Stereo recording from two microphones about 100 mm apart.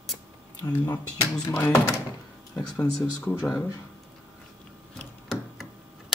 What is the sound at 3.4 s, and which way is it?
Speech, 25° left (ahead or behind).